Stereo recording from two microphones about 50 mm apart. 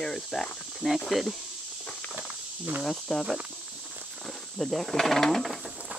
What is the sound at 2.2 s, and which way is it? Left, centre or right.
Snake, right.